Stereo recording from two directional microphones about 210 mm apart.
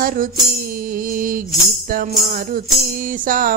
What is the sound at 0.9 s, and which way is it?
Mantra, 40° right (ahead or behind).